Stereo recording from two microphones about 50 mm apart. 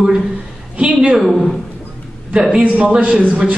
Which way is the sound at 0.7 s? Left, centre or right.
Right.